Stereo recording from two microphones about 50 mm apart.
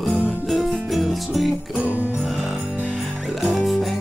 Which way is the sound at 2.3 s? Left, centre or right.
Centre.